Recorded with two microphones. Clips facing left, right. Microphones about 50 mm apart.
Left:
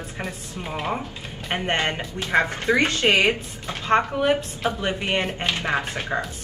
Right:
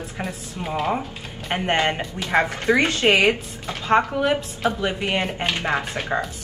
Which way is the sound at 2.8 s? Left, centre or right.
Right.